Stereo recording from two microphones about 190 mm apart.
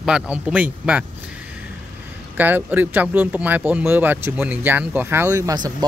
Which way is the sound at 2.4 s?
10° right (ahead or behind).